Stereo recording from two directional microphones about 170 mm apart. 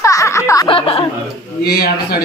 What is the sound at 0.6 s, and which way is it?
Speech, 30° left (ahead or behind).